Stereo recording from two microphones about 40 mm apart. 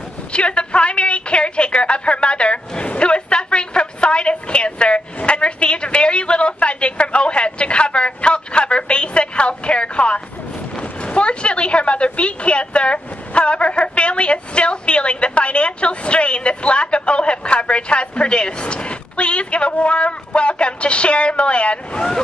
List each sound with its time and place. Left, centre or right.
0.3 s a woman's voice: left